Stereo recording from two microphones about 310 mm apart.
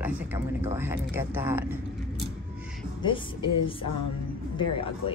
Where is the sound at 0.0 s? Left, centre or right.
Centre.